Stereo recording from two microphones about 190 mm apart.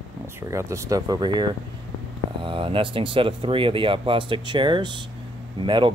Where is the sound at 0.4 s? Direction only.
15° right (ahead or behind).